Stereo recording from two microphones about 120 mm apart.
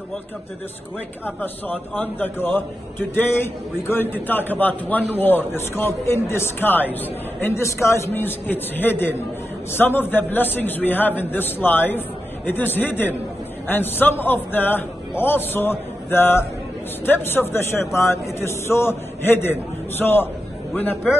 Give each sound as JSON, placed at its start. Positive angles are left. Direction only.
{"t": 1.2, "sound": "a man's voice", "side_deg": 15}